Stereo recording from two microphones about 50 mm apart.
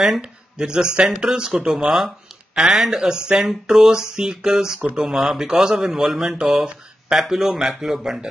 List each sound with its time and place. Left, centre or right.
0.2 s speech: centre